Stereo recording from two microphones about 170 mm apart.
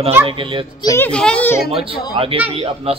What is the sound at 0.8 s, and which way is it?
Speech, 15° left (ahead or behind).